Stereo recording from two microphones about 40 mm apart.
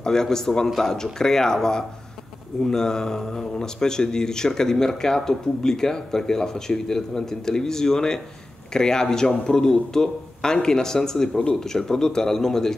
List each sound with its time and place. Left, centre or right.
0.0 s speech: centre